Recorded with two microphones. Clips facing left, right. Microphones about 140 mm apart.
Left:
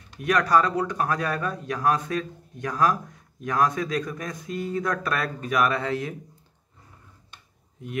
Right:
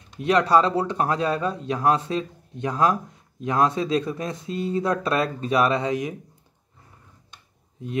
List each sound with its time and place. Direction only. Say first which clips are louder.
0.2 s speech: right 3 dB; 25° right (ahead or behind)